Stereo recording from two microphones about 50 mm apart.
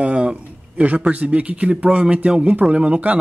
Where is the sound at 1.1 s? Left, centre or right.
Right.